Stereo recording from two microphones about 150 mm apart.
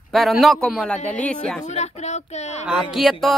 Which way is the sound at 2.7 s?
5° right (ahead or behind).